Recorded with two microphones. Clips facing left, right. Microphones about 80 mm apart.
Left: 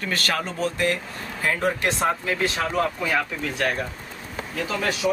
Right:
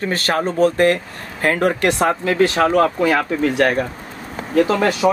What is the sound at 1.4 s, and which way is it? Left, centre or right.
Speech, right.